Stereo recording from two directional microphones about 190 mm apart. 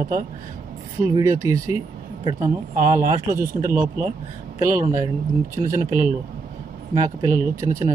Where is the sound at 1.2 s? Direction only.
15° right (ahead or behind).